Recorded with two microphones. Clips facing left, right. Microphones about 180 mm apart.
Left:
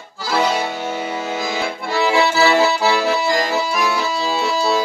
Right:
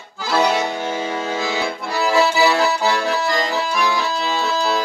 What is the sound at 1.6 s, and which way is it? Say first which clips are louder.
Accordion: left 2 dB; centre (ahead or behind).